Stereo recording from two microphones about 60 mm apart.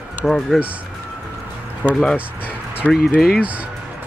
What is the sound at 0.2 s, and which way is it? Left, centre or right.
Speech, centre.